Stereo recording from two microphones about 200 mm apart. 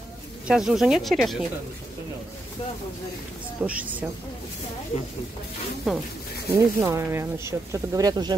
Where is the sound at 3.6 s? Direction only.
5° right (ahead or behind).